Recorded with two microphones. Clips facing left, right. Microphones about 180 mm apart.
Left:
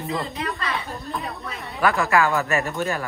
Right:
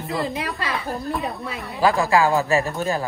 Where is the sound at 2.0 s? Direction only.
30° right (ahead or behind).